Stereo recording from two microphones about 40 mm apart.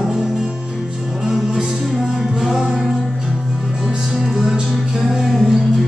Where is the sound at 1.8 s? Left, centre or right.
Centre.